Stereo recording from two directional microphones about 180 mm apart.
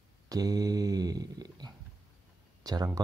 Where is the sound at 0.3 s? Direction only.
20° right (ahead or behind).